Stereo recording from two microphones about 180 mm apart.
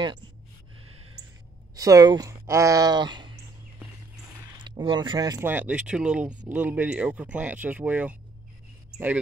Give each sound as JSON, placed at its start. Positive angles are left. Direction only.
{"t": 1.8, "sound": "speech", "side_deg": -20}
{"t": 4.6, "sound": "speech", "side_deg": -25}
{"t": 5.5, "sound": "speech", "side_deg": -10}